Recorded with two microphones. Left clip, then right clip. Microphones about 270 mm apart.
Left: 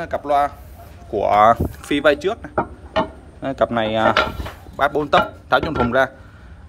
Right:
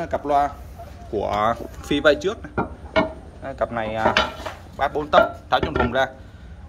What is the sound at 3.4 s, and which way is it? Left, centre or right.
Speech, left.